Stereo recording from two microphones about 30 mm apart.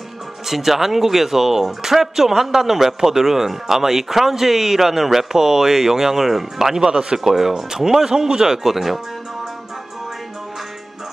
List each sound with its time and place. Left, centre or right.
0.5 s speech: centre; by 7.2 s right
7.2 s speech: centre
8.6 s speech: centre